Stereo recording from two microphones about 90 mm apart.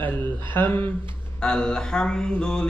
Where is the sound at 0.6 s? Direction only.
20° left (ahead or behind).